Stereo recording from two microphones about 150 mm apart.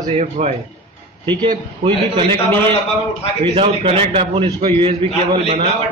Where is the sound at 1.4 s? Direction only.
35° right (ahead or behind).